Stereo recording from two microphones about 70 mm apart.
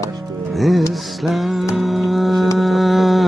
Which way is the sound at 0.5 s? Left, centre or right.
Centre.